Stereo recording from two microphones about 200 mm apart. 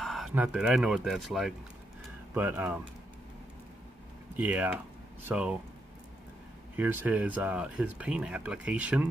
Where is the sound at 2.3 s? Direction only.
10° right (ahead or behind).